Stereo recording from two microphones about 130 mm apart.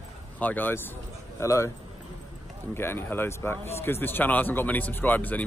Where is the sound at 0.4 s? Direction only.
15° left (ahead or behind).